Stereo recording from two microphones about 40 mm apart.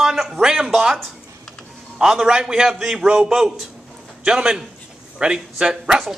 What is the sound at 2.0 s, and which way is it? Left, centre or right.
A man's voice, centre.